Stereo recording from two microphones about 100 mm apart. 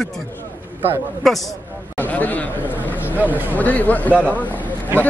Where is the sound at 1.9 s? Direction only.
15° left (ahead or behind).